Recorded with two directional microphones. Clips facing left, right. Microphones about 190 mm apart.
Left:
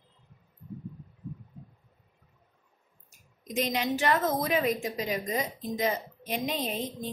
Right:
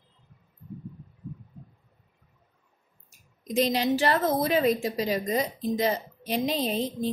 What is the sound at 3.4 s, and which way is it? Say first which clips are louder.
A woman's voice: right 5 dB; 35° right (ahead or behind).